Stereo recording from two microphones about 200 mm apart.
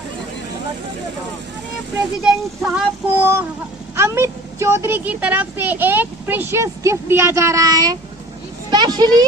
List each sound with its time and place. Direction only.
2.2 s speech: 5° right (ahead or behind); by 9.1 s 20° right (ahead or behind)